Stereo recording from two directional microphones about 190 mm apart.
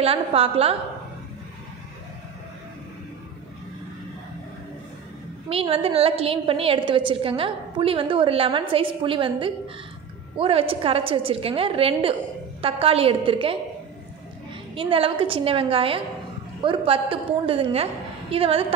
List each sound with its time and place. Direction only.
0.0 s a woman's voice: 30° right (ahead or behind)
5.5 s a woman's voice: 30° right (ahead or behind)
14.8 s a woman's voice: 30° right (ahead or behind)